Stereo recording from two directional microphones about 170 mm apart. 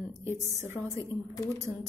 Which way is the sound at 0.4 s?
15° right (ahead or behind).